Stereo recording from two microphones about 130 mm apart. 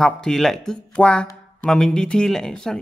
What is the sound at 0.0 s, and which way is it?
Speech, 5° left (ahead or behind).